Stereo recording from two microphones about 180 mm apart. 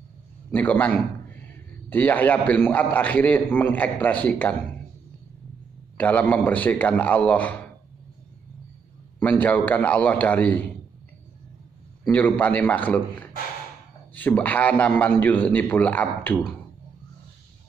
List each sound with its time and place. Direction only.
0.5 s a man's voice: 10° left (ahead or behind)
5.9 s a man's voice: 10° left (ahead or behind)
9.2 s a man's voice: 10° left (ahead or behind)
12.1 s a man's voice: 10° left (ahead or behind)